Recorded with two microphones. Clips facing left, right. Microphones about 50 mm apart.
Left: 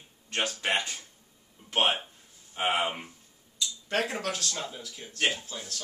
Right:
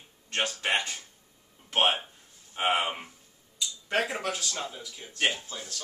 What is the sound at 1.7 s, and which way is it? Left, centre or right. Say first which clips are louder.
A man's voice: right 1 dB; centre.